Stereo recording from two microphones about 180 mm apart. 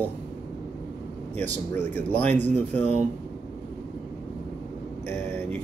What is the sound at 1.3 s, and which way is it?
Speech, 10° left (ahead or behind).